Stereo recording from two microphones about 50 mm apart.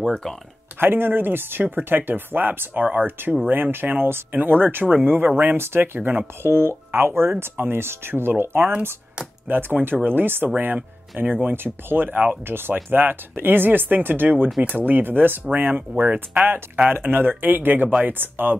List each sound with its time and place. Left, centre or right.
0.0 s speech: centre
0.7 s speech: right
6.4 s speech: right